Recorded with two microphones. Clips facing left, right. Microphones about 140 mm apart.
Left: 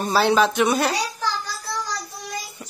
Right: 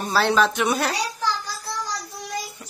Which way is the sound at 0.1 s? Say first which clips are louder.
Left 1 dB; 5° left (ahead or behind).